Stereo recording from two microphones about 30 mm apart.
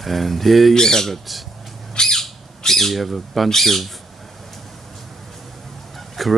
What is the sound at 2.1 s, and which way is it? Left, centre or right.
Squawk, centre.